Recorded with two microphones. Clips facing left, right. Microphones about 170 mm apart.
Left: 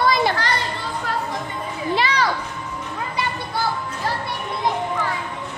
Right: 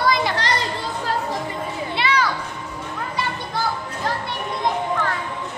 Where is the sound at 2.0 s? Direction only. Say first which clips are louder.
Right 1 dB; 35° left (ahead or behind).